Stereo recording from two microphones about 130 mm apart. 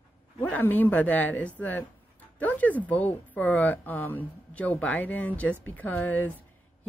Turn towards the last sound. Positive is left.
turn(degrees=15)  # may be behind; listen again after turning